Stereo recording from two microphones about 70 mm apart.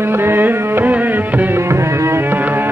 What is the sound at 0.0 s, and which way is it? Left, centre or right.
Music, right.